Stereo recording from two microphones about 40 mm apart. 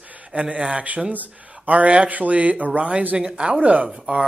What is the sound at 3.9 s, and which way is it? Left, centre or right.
Speech, centre.